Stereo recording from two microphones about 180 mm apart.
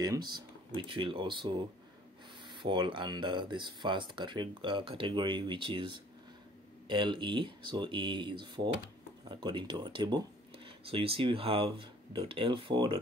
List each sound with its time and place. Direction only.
0.0 s speech: 20° right (ahead or behind)